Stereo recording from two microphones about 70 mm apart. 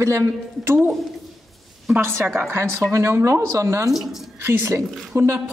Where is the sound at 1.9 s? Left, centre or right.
Right.